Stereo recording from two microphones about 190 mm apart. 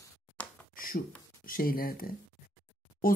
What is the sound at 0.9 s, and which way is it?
Speech, 45° left (ahead or behind).